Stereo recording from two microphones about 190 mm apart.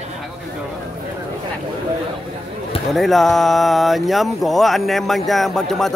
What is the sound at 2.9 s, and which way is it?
Speech, centre (ahead or behind).